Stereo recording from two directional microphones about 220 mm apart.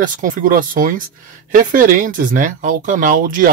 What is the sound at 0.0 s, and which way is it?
Speech, 35° right (ahead or behind).